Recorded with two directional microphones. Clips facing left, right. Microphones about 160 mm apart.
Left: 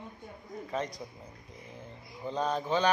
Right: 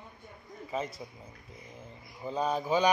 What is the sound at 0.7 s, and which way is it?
Speech, 5° right (ahead or behind).